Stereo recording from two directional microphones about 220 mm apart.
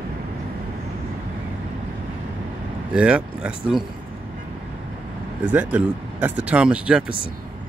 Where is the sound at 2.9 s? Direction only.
5° right (ahead or behind).